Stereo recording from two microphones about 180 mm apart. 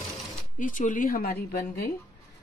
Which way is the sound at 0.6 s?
45° left (ahead or behind).